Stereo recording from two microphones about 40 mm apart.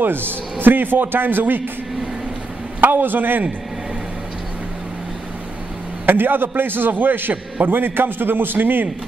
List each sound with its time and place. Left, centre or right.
0.0 s a man's voice: right
2.8 s a man's voice: right
6.0 s a man's voice: right